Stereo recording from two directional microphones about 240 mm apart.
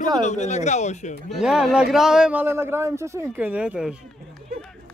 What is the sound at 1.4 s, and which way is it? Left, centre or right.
A man's voice, centre.